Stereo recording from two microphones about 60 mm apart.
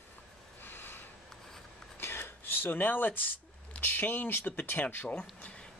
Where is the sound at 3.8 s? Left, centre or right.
Left.